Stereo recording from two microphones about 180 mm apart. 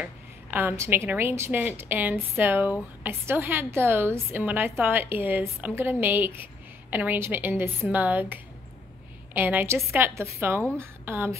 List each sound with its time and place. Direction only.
0.0 s a woman's voice: 10° right (ahead or behind)